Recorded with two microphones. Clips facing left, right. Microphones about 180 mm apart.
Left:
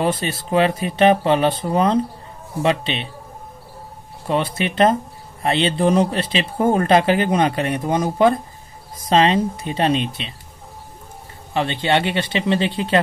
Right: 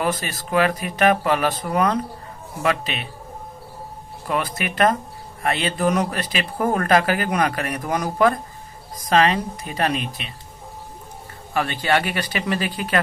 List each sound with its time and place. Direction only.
0.0 s speech: 30° left (ahead or behind)
4.3 s speech: 30° left (ahead or behind)
11.5 s speech: 25° left (ahead or behind)